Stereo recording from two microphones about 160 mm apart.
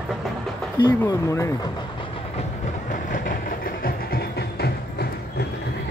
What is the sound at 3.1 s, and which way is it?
Train, 60° left (ahead or behind).